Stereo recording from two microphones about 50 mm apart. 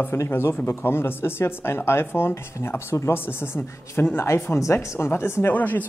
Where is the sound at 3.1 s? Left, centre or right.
Left.